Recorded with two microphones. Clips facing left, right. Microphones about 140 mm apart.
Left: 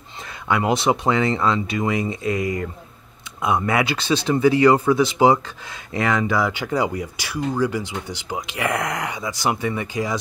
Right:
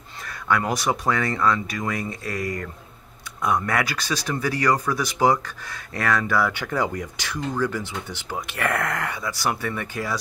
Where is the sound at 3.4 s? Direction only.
25° left (ahead or behind).